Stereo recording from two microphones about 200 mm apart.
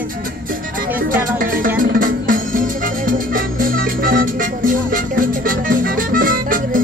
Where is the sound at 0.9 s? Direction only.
45° right (ahead or behind).